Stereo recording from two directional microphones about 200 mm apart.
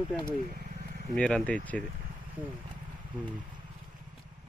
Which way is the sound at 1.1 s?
5° left (ahead or behind).